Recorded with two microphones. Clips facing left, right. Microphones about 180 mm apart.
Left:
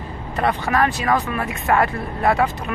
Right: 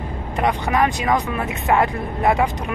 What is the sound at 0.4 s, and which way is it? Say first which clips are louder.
Speech: even; 15° right (ahead or behind).